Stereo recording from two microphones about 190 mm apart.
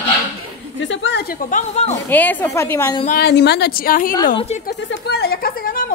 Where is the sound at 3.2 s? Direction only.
60° left (ahead or behind).